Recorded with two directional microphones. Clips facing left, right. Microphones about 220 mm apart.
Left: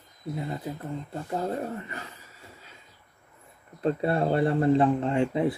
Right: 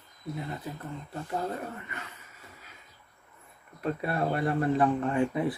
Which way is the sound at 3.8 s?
30° left (ahead or behind).